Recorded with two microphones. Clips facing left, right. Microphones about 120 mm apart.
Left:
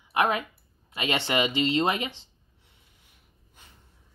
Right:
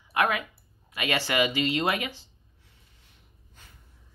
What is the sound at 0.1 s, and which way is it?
Speech, 25° left (ahead or behind).